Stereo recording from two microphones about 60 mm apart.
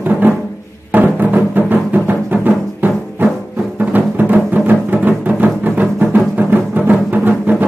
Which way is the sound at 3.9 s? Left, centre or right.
Right.